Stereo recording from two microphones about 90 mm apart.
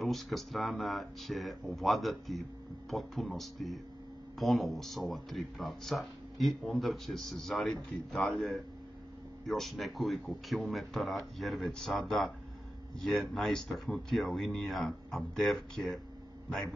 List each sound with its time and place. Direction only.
0.0 s a man's voice: centre (ahead or behind)